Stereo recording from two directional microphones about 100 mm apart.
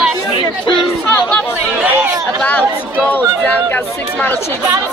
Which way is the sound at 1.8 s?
20° right (ahead or behind).